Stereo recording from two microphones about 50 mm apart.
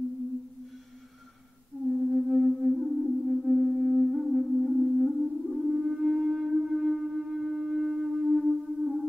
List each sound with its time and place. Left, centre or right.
2.0 s music: centre